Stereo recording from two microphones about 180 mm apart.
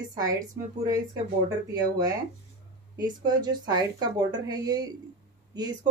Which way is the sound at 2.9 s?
20° right (ahead or behind).